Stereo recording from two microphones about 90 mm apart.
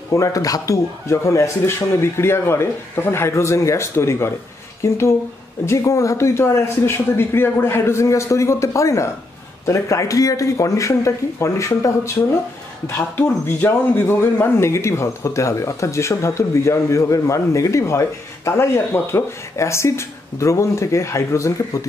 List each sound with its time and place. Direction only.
0.1 s speech: 35° left (ahead or behind)